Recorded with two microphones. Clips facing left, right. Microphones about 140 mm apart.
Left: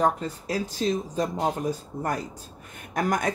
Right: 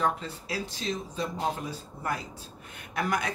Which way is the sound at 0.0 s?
45° left (ahead or behind).